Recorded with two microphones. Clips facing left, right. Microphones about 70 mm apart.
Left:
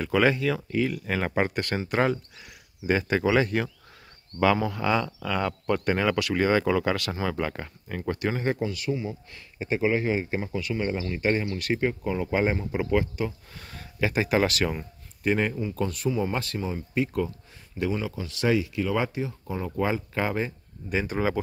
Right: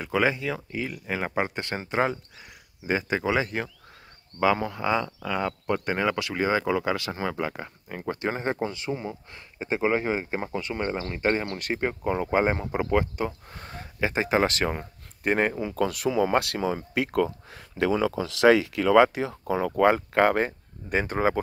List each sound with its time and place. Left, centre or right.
0.0 s speech: centre; by 11.4 s right
11.4 s speech: right
11.7 s speech: right
15.8 s speech: right
18.4 s speech: right
19.8 s speech: right